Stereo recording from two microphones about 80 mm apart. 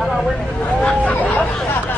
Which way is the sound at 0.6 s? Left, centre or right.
Centre.